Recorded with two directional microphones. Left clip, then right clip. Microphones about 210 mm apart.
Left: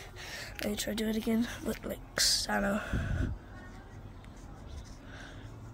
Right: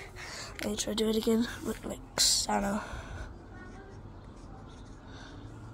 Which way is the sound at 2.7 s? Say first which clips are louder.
Left 1 dB; 20° left (ahead or behind).